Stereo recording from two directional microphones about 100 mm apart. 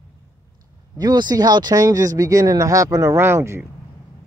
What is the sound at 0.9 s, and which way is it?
Speech, 45° right (ahead or behind).